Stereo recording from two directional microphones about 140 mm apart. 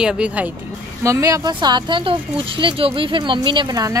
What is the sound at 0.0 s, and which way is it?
Speech, 5° right (ahead or behind).